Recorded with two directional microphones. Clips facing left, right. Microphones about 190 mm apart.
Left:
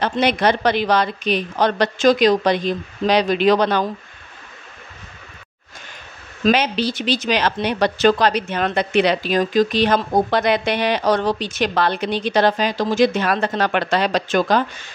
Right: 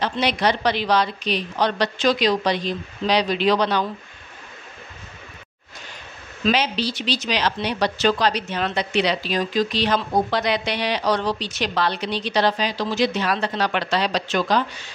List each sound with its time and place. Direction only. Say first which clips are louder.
0.0 s speech: left 4 dB; 50° left (ahead or behind)
6.4 s speech: left 4 dB; 50° left (ahead or behind)